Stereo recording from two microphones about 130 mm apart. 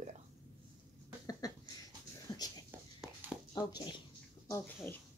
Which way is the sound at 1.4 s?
30° left (ahead or behind).